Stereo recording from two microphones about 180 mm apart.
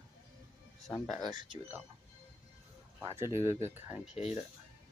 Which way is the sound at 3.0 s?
15° right (ahead or behind).